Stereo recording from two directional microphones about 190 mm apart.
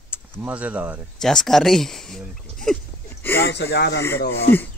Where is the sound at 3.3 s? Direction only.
60° left (ahead or behind).